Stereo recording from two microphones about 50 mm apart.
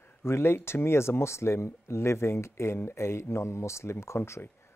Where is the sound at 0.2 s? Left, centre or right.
Left.